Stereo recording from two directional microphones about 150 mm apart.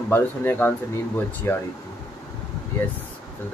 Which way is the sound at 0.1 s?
15° left (ahead or behind).